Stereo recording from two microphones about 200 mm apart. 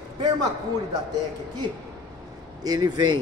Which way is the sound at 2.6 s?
20° right (ahead or behind).